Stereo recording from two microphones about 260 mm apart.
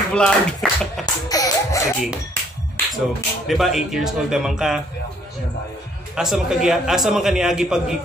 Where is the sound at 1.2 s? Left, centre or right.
Centre.